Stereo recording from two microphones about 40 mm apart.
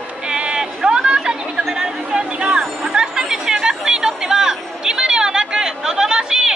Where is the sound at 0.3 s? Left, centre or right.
Right.